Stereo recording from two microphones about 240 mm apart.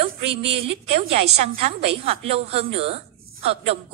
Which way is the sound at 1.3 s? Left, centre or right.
Right.